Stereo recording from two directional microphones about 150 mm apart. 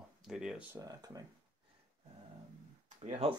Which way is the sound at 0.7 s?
25° right (ahead or behind).